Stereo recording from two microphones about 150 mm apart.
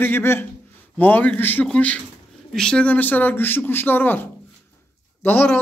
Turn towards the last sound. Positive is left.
turn(degrees=10)  # may be behind; listen again after turning